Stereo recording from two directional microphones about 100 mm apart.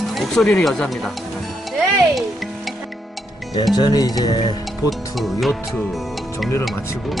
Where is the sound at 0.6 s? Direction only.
5° left (ahead or behind).